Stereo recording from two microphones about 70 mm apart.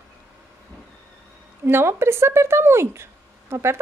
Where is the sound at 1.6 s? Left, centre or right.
Right.